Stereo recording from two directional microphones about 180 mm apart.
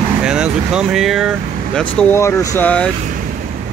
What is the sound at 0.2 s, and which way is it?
Speech, 5° right (ahead or behind).